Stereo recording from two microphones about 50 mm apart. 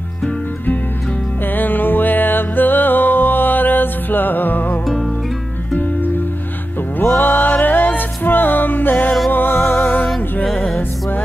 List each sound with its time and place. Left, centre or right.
1.4 s music: left
4.8 s music: centre
7.2 s music: left